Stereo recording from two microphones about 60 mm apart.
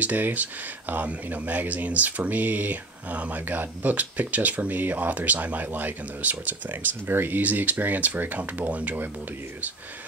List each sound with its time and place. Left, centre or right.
0.0 s speech: right